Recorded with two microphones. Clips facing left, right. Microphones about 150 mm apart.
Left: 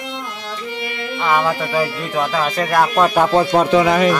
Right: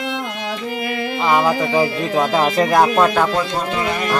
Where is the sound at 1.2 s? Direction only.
15° right (ahead or behind).